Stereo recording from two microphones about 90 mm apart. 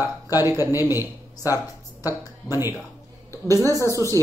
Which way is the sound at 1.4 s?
40° left (ahead or behind).